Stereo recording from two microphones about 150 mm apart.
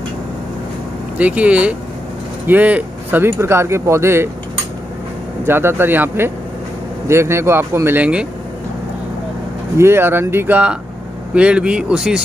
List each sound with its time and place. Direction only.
1.1 s speech: 10° right (ahead or behind)
5.4 s speech: 15° right (ahead or behind)
9.8 s speech: 15° right (ahead or behind)